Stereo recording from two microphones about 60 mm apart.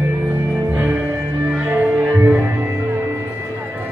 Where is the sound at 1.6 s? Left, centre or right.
Right.